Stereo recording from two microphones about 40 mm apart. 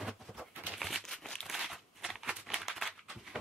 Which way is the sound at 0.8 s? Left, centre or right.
Centre.